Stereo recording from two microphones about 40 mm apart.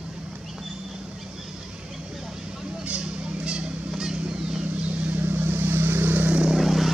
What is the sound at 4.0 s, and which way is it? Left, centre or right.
Vehicle, centre.